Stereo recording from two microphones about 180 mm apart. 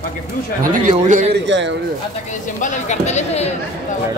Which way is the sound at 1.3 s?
85° right.